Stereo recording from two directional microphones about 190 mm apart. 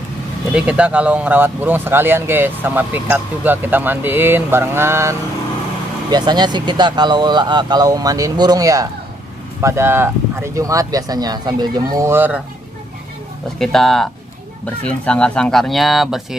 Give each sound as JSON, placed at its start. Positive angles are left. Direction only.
{"t": 0.6, "sound": "speech", "side_deg": -5}
{"t": 13.6, "sound": "speech", "side_deg": 0}